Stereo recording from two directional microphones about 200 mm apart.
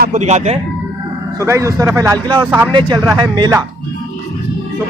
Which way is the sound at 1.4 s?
15° right (ahead or behind).